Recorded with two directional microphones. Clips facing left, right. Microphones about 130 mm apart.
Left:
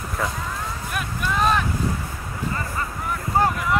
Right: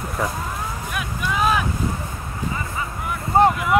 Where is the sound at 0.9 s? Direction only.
5° right (ahead or behind).